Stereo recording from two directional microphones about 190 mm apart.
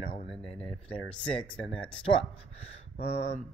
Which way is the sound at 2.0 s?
30° left (ahead or behind).